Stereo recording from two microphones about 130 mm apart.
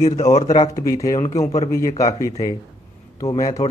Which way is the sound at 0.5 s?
30° left (ahead or behind).